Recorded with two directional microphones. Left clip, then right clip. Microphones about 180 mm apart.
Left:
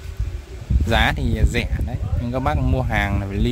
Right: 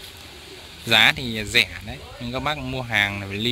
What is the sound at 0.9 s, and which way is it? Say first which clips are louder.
Speech: right 3 dB; 25° left (ahead or behind).